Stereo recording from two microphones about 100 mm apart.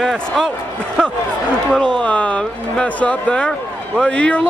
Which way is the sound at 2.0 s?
10° left (ahead or behind).